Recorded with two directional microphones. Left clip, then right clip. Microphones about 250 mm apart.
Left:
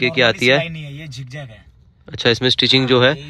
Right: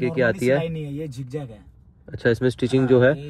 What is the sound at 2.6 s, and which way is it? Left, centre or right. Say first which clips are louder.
Speech: left 7 dB; right.